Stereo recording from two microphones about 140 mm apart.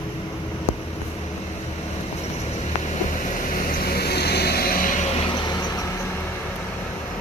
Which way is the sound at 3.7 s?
90° left.